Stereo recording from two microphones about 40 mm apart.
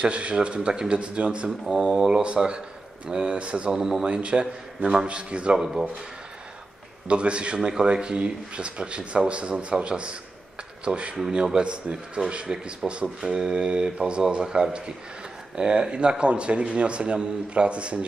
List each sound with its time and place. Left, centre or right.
0.0 s speech: right
2.0 s speech: centre
2.2 s speech: right
5.6 s speech: centre
7.1 s speech: right